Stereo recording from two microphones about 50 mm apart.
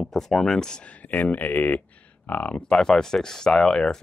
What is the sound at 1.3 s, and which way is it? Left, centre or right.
Speech, left.